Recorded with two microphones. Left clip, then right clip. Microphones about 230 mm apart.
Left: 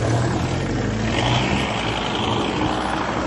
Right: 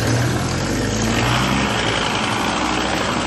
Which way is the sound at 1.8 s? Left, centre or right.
Right.